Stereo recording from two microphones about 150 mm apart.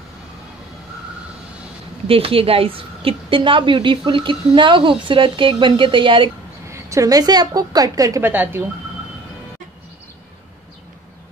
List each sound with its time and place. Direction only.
2.0 s a woman's voice: 40° right (ahead or behind)
6.7 s a woman's voice: 20° right (ahead or behind)
8.3 s speech: 10° right (ahead or behind)